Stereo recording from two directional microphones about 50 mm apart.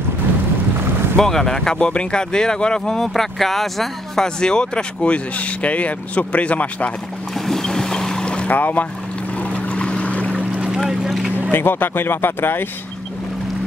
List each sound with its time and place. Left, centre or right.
1.1 s speech: centre; by 6.9 s left
7.3 s boat: centre
8.5 s speech: left
9.4 s boat: left
11.5 s speech: left